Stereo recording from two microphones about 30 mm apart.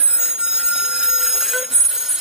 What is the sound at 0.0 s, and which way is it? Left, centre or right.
Train, right.